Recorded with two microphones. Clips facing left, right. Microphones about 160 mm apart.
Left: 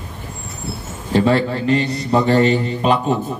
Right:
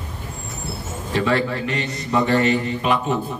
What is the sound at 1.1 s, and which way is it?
A man's voice, 35° left (ahead or behind).